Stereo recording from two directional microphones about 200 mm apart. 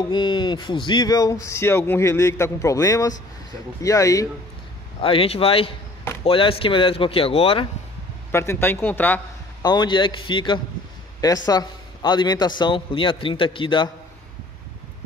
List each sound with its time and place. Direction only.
0.1 s speech: 20° left (ahead or behind)
5.0 s a man's voice: 25° left (ahead or behind)
8.3 s speech: 10° left (ahead or behind)
9.6 s a man's voice: 20° left (ahead or behind)